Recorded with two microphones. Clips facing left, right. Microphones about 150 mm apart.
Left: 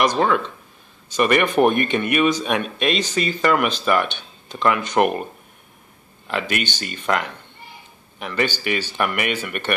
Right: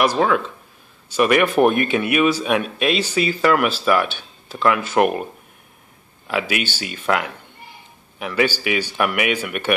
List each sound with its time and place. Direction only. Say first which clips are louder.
0.0 s speech: right 1 dB; 5° right (ahead or behind)
6.2 s a man's voice: right 2 dB; 5° right (ahead or behind)